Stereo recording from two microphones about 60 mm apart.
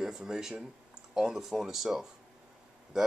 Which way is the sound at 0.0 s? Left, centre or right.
Centre.